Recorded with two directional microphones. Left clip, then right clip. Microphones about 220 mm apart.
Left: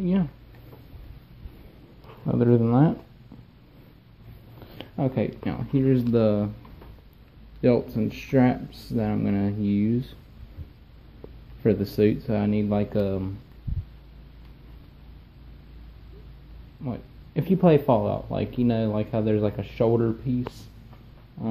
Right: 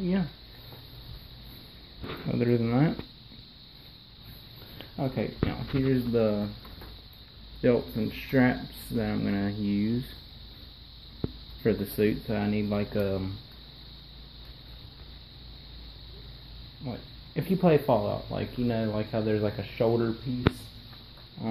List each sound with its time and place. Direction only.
0.0 s speech: 15° left (ahead or behind)
2.2 s speech: 15° left (ahead or behind)
4.7 s speech: 25° left (ahead or behind)
7.6 s speech: 15° left (ahead or behind)
11.6 s speech: 20° left (ahead or behind)
16.8 s speech: 20° left (ahead or behind)
21.4 s a sound: 10° left (ahead or behind)